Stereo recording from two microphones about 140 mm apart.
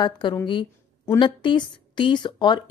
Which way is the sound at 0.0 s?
30° left (ahead or behind).